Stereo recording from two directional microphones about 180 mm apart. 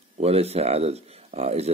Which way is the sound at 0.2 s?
35° right (ahead or behind).